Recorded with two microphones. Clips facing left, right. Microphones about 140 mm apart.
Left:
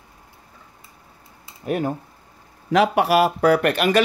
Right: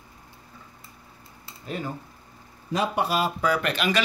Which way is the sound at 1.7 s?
60° left (ahead or behind).